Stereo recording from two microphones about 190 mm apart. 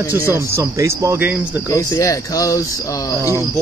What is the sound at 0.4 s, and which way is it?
Speech, 15° right (ahead or behind).